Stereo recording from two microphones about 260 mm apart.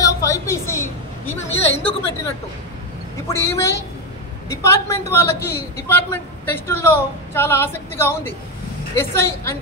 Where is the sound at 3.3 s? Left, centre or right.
Centre.